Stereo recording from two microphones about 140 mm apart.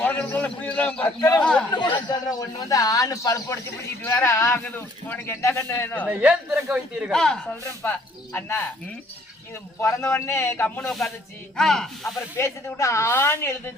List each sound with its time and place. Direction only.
0.0 s speech: 10° left (ahead or behind)
1.7 s a man's voice: 30° left (ahead or behind); by 6.0 s 15° left (ahead or behind)
6.0 s a man's voice: 10° right (ahead or behind)
7.1 s speech: 5° left (ahead or behind)
7.8 s speech: 15° left (ahead or behind)
10.1 s a man's voice: 20° left (ahead or behind)
11.5 s speech: 5° left (ahead or behind)
12.4 s speech: 20° left (ahead or behind)